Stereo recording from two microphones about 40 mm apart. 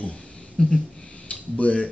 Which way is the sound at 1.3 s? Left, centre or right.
Left.